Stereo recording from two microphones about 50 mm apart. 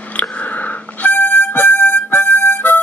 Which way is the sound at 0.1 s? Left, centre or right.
Left.